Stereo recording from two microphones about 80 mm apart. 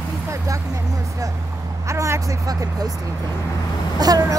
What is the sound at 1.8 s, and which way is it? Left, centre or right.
Vehicle, right.